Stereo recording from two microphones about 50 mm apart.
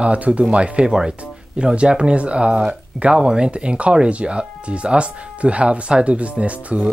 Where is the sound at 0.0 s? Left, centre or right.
Right.